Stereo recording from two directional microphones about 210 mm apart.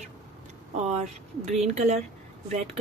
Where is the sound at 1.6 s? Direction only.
30° right (ahead or behind).